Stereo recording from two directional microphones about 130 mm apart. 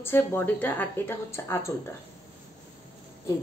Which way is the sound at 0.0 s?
15° left (ahead or behind).